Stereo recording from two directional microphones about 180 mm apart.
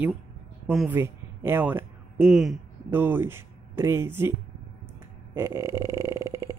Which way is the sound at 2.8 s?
10° right (ahead or behind).